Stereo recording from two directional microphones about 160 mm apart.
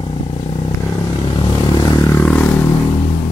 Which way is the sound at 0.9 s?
25° left (ahead or behind).